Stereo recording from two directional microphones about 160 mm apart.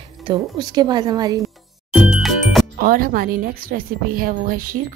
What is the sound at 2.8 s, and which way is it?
A woman's voice, 65° right (ahead or behind).